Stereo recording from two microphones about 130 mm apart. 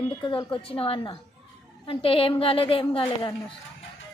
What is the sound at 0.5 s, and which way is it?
Speech, 45° left (ahead or behind).